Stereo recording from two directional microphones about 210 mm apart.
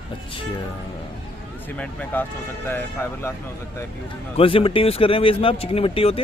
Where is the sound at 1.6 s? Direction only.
5° left (ahead or behind).